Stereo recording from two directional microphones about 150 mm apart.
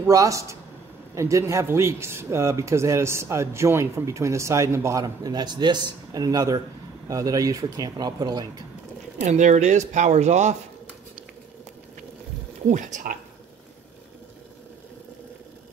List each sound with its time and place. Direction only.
0.0 s speech: 20° right (ahead or behind)
9.2 s speech: 55° right (ahead or behind)
12.6 s speech: 60° right (ahead or behind)